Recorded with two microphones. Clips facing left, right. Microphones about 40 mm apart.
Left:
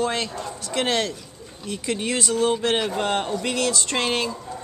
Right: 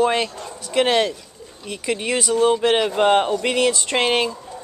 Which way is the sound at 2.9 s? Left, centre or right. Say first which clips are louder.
Right 7 dB; right.